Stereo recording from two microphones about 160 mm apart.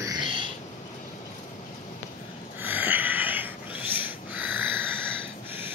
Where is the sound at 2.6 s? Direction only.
10° right (ahead or behind).